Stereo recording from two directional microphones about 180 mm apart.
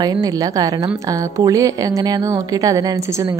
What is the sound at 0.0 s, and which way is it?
A woman's voice, 20° right (ahead or behind).